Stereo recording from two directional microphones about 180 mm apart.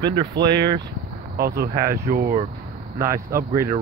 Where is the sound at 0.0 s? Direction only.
25° right (ahead or behind).